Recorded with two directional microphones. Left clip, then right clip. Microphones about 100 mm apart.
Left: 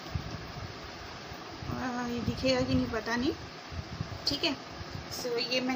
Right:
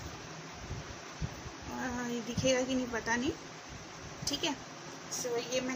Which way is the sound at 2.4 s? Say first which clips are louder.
Left 1 dB; 5° left (ahead or behind).